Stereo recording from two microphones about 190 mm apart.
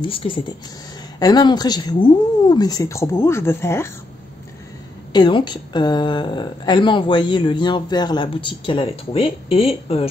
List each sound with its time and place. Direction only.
0.0 s a woman's voice: 30° left (ahead or behind)
5.1 s a woman's voice: 25° left (ahead or behind)